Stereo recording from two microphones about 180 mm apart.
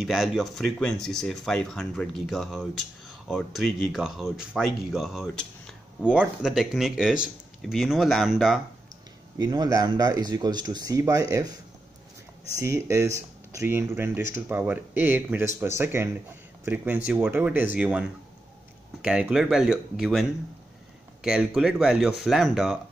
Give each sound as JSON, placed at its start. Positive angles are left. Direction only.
{"t": 0.0, "sound": "speech", "side_deg": -5}
{"t": 9.4, "sound": "speech", "side_deg": -20}
{"t": 12.5, "sound": "speech", "side_deg": -15}